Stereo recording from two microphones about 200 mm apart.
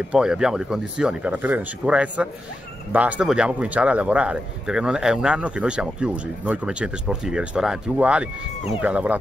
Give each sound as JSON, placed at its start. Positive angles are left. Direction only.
{"t": 0.1, "sound": "a man's voice", "side_deg": -5}